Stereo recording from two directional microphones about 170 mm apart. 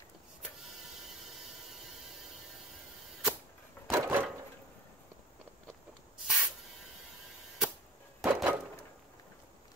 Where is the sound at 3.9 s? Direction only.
15° right (ahead or behind).